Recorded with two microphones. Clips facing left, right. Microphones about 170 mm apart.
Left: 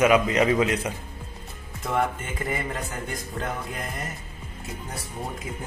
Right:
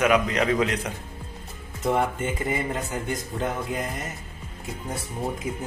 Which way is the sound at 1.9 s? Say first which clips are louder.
Right 3 dB; 25° right (ahead or behind).